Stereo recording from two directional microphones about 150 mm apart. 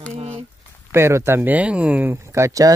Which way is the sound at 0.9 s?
15° right (ahead or behind).